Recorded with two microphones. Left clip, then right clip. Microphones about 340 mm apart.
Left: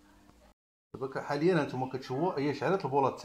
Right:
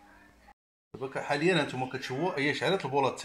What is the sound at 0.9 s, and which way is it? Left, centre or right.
Speech, centre.